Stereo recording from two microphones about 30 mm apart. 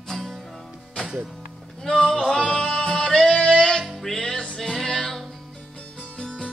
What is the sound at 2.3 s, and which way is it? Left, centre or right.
Music, centre.